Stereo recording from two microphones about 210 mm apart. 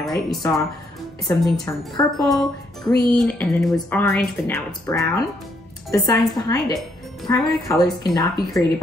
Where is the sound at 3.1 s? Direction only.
Centre (ahead or behind).